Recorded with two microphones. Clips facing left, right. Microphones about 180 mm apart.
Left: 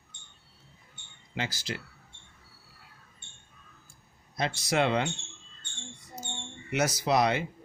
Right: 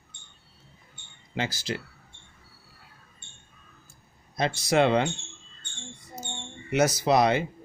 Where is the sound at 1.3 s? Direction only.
30° right (ahead or behind).